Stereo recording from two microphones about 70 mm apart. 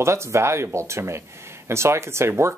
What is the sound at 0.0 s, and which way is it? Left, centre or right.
Speech, right.